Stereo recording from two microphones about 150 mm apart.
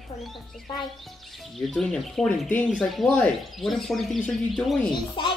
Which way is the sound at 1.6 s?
Centre (ahead or behind).